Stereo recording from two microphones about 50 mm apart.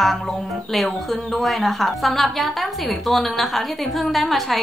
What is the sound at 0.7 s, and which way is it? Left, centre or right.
A woman's voice, centre.